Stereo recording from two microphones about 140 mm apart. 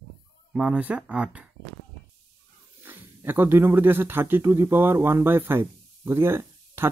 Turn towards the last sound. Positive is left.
turn(degrees=-15)  # may be behind; listen again after turning